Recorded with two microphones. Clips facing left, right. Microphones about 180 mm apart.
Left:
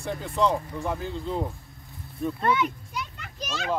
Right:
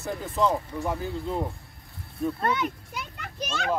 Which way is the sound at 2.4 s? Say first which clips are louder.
Left 2 dB; 40° right (ahead or behind).